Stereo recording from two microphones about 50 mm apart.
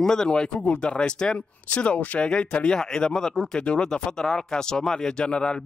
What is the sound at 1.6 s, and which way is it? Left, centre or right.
Speech, left.